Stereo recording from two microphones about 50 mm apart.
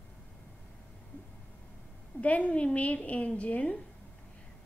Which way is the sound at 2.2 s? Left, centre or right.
Left.